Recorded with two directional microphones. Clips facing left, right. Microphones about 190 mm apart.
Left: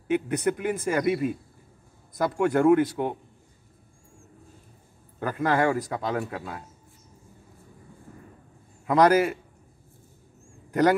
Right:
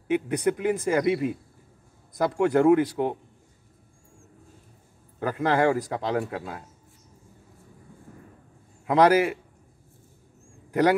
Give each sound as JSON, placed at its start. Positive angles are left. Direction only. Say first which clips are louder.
{"t": 0.1, "sound": "a man's voice", "louder": "right 1 dB", "side_deg": -15}
{"t": 5.2, "sound": "a man's voice", "louder": "right 1 dB", "side_deg": -15}
{"t": 8.8, "sound": "a man's voice", "louder": "even", "side_deg": -15}
{"t": 10.7, "sound": "a man's voice", "louder": "even", "side_deg": -10}